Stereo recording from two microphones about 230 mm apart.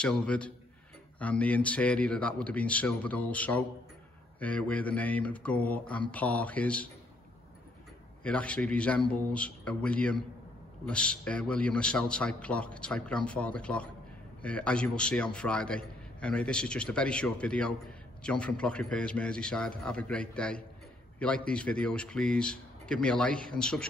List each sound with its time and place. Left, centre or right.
0.0 s a man's voice: centre
8.2 s a man's voice: centre